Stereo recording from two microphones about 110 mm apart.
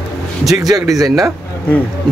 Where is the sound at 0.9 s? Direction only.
30° right (ahead or behind).